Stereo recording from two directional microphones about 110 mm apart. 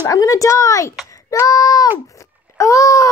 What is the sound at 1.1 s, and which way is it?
Child singing, 30° left (ahead or behind).